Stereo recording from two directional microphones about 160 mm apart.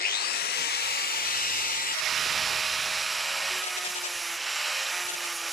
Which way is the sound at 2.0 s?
Centre (ahead or behind).